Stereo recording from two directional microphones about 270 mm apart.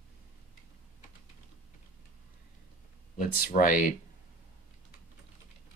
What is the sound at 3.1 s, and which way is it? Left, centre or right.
Speech, left.